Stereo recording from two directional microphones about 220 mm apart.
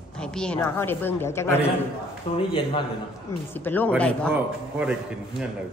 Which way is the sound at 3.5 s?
10° left (ahead or behind).